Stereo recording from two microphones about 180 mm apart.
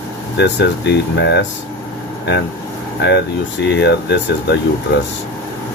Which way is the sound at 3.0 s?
80° left.